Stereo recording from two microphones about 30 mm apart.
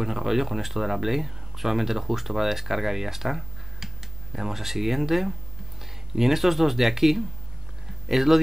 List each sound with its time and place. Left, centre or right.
0.0 s speech: centre